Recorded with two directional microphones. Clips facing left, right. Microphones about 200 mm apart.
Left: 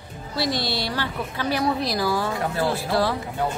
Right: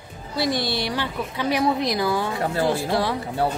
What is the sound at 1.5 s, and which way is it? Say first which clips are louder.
A woman's voice: right 2 dB; 20° right (ahead or behind).